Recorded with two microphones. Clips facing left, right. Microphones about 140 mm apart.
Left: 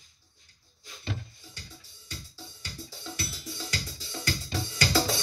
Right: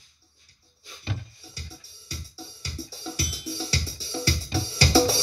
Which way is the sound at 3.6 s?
35° right (ahead or behind).